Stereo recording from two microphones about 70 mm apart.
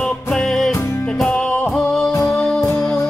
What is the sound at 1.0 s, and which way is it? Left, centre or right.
Music, centre.